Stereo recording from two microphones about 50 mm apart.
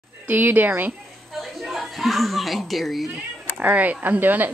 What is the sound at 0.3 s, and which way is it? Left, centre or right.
Speech, right.